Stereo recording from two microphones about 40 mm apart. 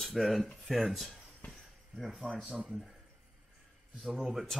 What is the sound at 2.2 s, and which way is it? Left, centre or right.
Speech, right.